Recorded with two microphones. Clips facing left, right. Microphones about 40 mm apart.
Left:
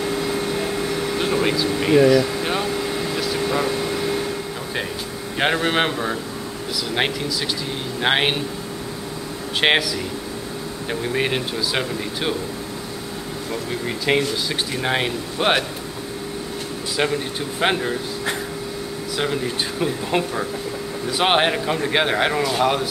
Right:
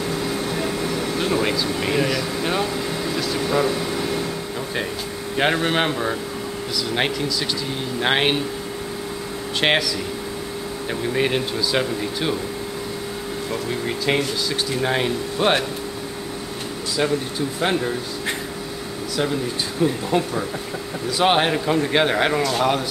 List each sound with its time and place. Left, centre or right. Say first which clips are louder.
1.1 s speech: left 1 dB; centre
5.4 s a man's voice: even; centre
9.6 s speech: left 1 dB; centre
13.5 s a man's voice: even; centre
14.5 s speech: right 1 dB; centre
17.6 s speech: left 2 dB; left
19.8 s speech: right 4 dB; left
21.1 s speech: even; centre